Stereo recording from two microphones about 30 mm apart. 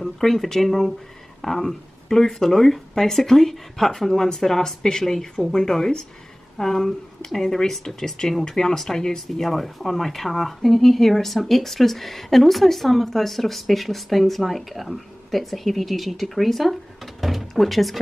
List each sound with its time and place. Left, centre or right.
0.2 s a woman's voice: centre